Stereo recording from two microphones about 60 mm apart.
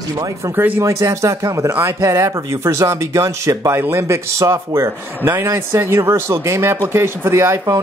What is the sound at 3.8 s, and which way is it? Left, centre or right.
Speech, right.